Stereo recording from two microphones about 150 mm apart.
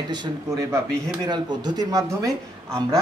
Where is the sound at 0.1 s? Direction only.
25° right (ahead or behind).